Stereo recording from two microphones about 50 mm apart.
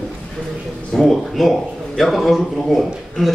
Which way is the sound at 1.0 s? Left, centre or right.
Centre.